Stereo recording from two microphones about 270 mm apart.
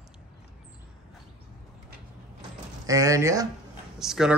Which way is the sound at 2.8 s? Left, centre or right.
Centre.